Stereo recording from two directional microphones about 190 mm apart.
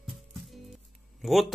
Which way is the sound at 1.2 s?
Centre (ahead or behind).